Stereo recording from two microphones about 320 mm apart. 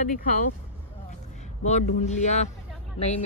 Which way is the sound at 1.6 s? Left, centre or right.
Left.